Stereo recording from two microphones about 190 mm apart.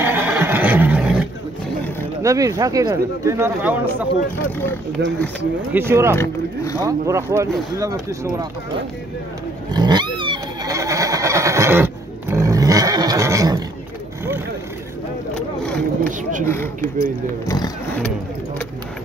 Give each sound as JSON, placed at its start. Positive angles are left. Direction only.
{"t": 0.0, "sound": "neigh", "side_deg": -10}
{"t": 2.2, "sound": "speech", "side_deg": -15}
{"t": 4.5, "sound": "speech", "side_deg": 10}
{"t": 5.7, "sound": "speech", "side_deg": -10}
{"t": 6.1, "sound": "speech", "side_deg": 15}
{"t": 6.8, "sound": "speech", "side_deg": -15}
{"t": 9.7, "sound": "pig", "side_deg": -20}
{"t": 15.6, "sound": "vehicle", "side_deg": 5}
{"t": 16.1, "sound": "speech", "side_deg": -45}
{"t": 16.4, "sound": "speech", "side_deg": 10}